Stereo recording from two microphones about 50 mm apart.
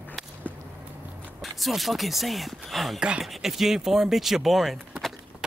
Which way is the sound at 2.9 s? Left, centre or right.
Centre.